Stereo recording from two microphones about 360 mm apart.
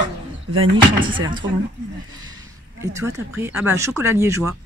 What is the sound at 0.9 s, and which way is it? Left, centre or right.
Speech, centre.